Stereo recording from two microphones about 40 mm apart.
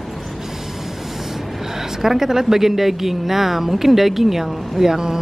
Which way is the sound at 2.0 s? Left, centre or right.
Centre.